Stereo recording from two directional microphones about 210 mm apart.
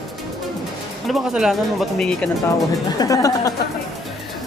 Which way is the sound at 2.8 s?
15° left (ahead or behind).